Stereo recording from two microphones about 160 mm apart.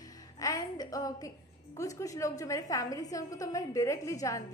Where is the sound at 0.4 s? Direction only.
20° left (ahead or behind).